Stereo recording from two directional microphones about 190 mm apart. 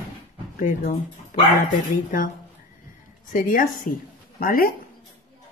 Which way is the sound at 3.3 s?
45° left (ahead or behind).